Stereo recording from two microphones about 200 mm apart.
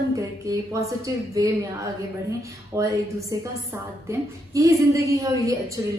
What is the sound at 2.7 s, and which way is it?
A woman's voice, 15° right (ahead or behind).